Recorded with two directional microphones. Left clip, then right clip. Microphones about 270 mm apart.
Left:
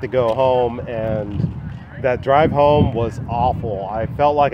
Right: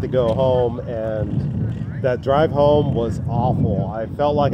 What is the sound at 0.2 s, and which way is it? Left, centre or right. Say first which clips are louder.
Speech: left 2 dB; centre.